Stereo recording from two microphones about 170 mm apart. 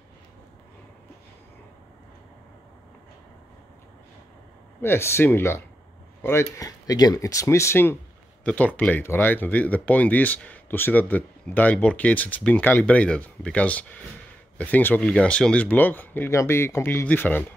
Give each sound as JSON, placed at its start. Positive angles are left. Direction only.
{"t": 4.8, "sound": "speech", "side_deg": 15}